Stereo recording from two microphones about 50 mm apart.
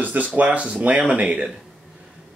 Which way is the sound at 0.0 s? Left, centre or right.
Right.